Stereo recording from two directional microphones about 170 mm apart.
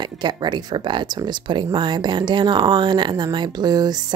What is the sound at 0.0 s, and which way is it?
Speech, 25° right (ahead or behind).